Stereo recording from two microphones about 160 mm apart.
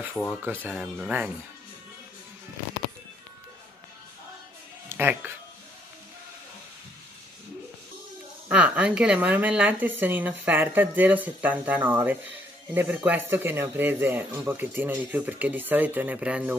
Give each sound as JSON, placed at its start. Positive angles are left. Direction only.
{"t": 0.1, "sound": "speech", "side_deg": 15}
{"t": 0.4, "sound": "a man's voice", "side_deg": -10}
{"t": 4.8, "sound": "speech", "side_deg": -10}
{"t": 8.5, "sound": "a man's voice", "side_deg": -10}